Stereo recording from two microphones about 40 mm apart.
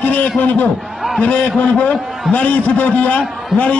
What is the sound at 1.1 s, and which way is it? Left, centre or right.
A man's voice, left.